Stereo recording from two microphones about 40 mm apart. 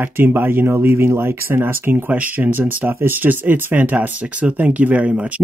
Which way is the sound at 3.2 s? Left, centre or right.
Right.